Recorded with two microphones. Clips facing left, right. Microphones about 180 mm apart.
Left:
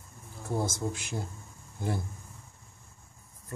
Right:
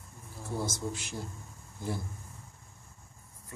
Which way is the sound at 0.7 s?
50° left (ahead or behind).